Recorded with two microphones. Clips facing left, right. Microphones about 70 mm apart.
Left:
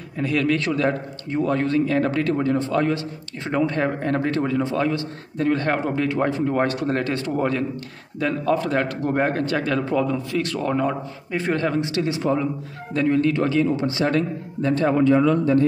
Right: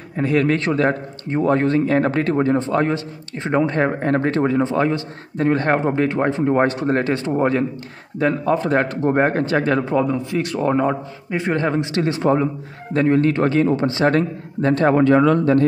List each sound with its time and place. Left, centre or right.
0.2 s a man's voice: right
12.0 s a man's voice: right